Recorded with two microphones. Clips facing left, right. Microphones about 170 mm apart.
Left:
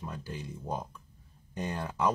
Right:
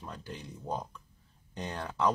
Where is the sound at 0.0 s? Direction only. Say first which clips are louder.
Left 3 dB; 5° left (ahead or behind).